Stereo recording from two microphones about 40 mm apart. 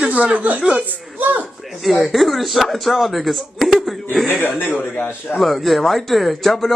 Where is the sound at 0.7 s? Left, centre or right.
Right.